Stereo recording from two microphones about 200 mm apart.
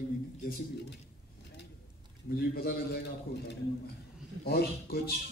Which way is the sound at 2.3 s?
50° left (ahead or behind).